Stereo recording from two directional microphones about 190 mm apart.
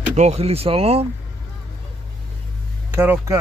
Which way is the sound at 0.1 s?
35° right (ahead or behind).